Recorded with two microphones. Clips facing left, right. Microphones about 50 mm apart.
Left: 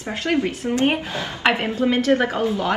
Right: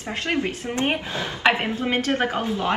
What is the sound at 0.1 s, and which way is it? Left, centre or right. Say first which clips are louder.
A woman's voice: left 3 dB; right.